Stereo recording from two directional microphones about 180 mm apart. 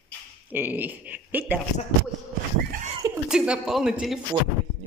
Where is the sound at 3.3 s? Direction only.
5° right (ahead or behind).